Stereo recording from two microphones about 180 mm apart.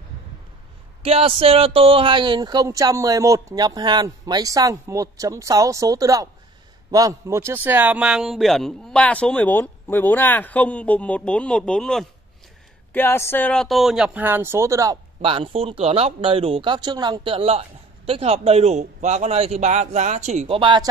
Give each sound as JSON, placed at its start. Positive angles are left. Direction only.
{"t": 1.0, "sound": "a man's voice", "side_deg": -35}
{"t": 15.2, "sound": "speech", "side_deg": -30}